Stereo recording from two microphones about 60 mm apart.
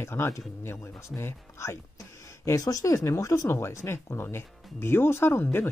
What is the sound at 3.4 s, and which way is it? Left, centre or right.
Speech, left.